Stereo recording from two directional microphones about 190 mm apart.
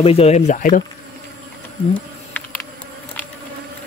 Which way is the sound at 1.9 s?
10° left (ahead or behind).